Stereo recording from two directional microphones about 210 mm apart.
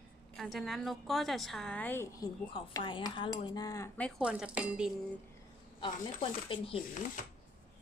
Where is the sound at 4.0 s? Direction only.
Centre (ahead or behind).